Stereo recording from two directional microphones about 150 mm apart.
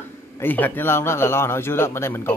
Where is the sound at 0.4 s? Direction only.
10° left (ahead or behind).